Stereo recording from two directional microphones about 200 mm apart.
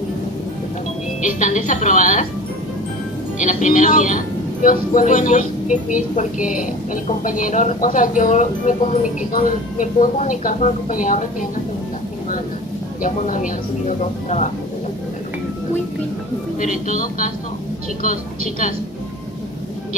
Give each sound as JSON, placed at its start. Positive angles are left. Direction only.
{"t": 1.2, "sound": "a woman's voice", "side_deg": 40}
{"t": 3.3, "sound": "a woman's voice", "side_deg": 40}
{"t": 13.0, "sound": "a woman's voice", "side_deg": 40}
{"t": 16.5, "sound": "a woman's voice", "side_deg": 40}